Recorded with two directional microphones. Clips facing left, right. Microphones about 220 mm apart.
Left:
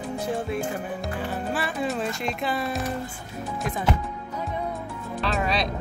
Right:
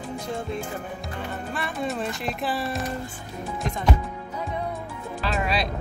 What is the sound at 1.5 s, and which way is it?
Speech, 5° left (ahead or behind).